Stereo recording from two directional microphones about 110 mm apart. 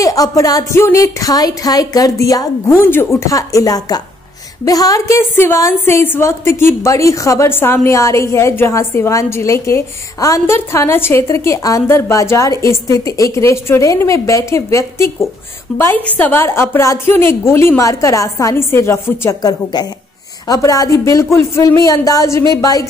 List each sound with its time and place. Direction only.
0.0 s a woman's voice: 30° left (ahead or behind)
2.7 s a woman's voice: 20° left (ahead or behind)
15.7 s a woman's voice: centre (ahead or behind)
16.2 s a woman's voice: 20° left (ahead or behind)
19.4 s a woman's voice: 40° left (ahead or behind)